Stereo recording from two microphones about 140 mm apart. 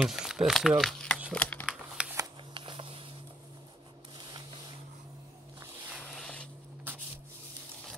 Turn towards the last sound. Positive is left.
turn(degrees=5)  # may be behind; listen again after turning